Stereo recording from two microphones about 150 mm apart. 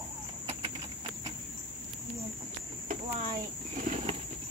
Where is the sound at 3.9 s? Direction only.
40° right (ahead or behind).